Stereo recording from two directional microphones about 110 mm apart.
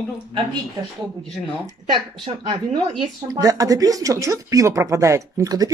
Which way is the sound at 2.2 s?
40° right (ahead or behind).